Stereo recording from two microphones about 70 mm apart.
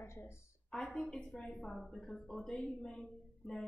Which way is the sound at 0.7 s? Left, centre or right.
Centre.